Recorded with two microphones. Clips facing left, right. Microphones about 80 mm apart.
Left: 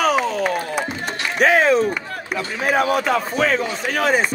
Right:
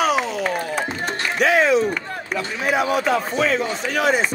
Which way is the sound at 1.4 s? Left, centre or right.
Left.